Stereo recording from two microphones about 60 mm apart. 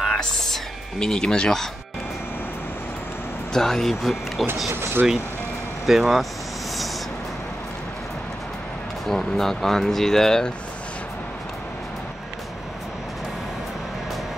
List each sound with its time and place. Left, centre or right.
0.0 s whispering: centre
3.5 s speech: centre
4.7 s speech: right
5.9 s speech: centre
9.0 s speech: centre